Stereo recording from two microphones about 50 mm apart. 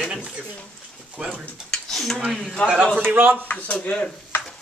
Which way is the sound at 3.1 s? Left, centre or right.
Right.